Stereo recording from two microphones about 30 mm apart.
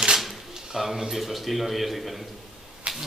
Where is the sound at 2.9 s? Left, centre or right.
Right.